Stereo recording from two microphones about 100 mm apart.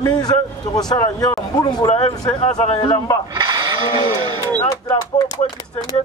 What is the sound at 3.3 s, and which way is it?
Speech, 50° right (ahead or behind).